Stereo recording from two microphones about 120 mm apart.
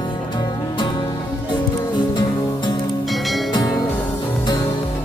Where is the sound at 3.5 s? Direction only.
35° left (ahead or behind).